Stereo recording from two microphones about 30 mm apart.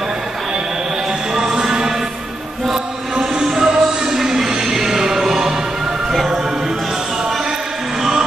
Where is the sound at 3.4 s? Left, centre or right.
Centre.